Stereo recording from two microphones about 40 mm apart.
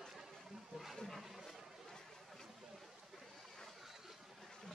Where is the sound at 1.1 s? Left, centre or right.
Centre.